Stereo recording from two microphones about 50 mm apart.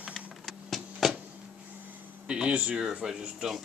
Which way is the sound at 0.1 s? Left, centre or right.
Centre.